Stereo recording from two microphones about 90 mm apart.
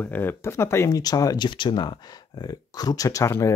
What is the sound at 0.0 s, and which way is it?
Speech, 25° left (ahead or behind).